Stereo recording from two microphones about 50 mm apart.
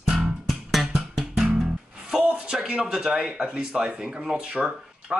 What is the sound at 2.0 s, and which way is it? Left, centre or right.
A man's voice, centre.